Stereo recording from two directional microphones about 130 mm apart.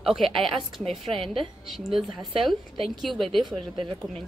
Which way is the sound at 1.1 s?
45° right (ahead or behind).